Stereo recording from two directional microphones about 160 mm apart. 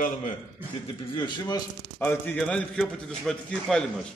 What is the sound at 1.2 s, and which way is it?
Speech, 25° left (ahead or behind).